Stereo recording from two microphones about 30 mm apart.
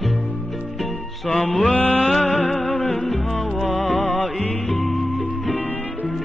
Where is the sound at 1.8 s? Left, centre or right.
Left.